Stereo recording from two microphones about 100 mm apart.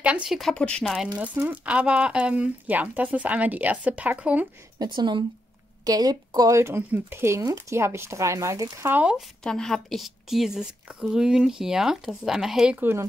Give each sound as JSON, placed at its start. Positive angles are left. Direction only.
{"t": 0.0, "sound": "speech", "side_deg": -10}
{"t": 0.4, "sound": "speech", "side_deg": 5}
{"t": 0.9, "sound": "speech", "side_deg": -15}
{"t": 4.7, "sound": "a woman's voice", "side_deg": -50}
{"t": 6.6, "sound": "speech", "side_deg": -25}
{"t": 8.8, "sound": "speech", "side_deg": -20}
{"t": 9.4, "sound": "speech", "side_deg": 5}